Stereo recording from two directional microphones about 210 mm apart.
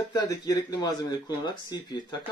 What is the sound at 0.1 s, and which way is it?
Speech, 20° left (ahead or behind).